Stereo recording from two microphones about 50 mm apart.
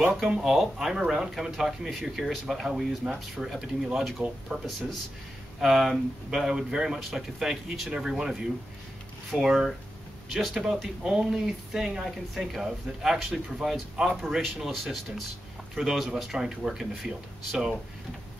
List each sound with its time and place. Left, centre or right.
0.4 s speech: centre
4.2 s speech: right
5.6 s speech: centre